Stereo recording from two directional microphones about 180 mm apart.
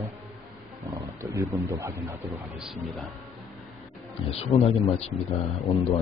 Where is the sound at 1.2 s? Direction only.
15° right (ahead or behind).